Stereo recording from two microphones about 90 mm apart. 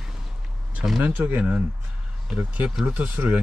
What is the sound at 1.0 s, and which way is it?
Speech, 15° right (ahead or behind).